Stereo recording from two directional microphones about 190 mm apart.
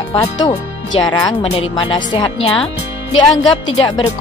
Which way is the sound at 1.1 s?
20° left (ahead or behind).